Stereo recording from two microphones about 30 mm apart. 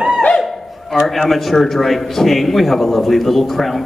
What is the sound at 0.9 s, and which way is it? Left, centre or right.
A man's voice, centre.